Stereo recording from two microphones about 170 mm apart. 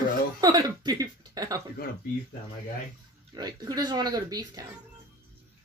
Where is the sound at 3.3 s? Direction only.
25° right (ahead or behind).